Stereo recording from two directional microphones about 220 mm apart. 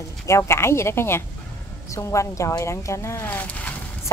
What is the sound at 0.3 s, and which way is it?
Speech, 10° left (ahead or behind).